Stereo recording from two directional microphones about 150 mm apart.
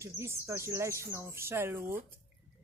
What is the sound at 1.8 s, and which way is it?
Speech, 75° right (ahead or behind).